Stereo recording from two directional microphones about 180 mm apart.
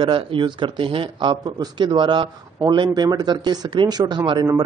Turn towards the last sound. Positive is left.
turn(degrees=-20)  # may be behind; listen again after turning